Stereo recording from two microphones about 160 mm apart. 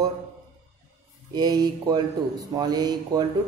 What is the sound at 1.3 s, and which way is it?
Speech, 25° right (ahead or behind).